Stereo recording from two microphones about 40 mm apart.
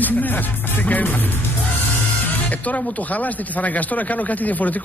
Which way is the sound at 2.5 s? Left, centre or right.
Left.